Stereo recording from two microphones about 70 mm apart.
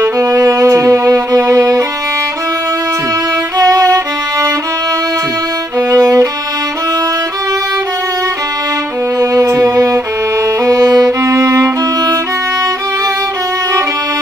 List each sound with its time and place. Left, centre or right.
0.0 s music: right
3.5 s violin: right
5.9 s music: right
9.2 s music: right
10.6 s violin: right